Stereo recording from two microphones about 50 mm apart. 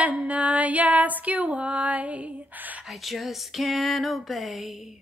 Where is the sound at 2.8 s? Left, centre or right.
Centre.